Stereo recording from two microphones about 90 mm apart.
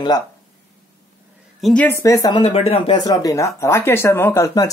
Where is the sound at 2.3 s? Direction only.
85° left.